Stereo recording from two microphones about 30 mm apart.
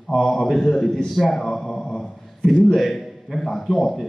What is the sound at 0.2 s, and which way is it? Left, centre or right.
A man's voice, centre.